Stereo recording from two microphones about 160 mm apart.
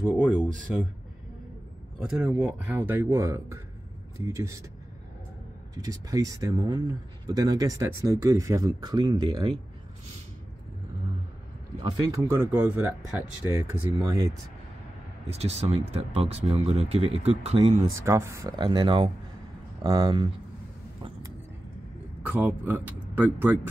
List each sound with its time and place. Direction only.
0.1 s speech: 10° right (ahead or behind)
2.0 s speech: 5° right (ahead or behind)
5.8 s speech: 20° right (ahead or behind)
11.8 s speech: 20° right (ahead or behind)
15.2 s speech: 40° right (ahead or behind)
17.9 s speech: 15° right (ahead or behind)
22.2 s speech: 10° right (ahead or behind)